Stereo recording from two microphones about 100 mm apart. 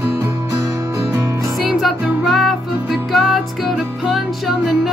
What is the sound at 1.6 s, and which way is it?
Music, 5° right (ahead or behind).